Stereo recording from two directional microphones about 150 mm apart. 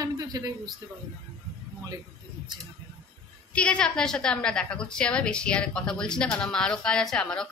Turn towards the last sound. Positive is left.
turn(degrees=5)  # may be behind; listen again after turning